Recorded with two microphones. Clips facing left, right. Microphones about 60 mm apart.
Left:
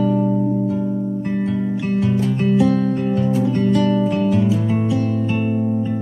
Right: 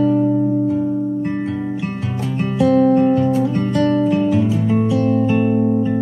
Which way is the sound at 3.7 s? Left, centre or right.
Centre.